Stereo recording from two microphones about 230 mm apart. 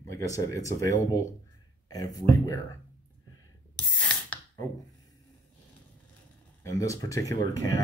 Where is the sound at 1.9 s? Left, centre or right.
Centre.